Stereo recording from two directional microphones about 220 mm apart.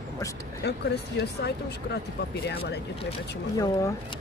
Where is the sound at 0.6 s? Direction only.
50° left (ahead or behind).